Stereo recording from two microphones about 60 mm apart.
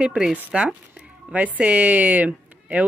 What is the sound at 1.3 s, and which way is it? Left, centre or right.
Speech, right.